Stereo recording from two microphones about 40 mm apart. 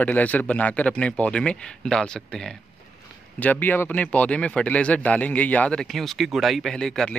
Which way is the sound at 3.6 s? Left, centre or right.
Left.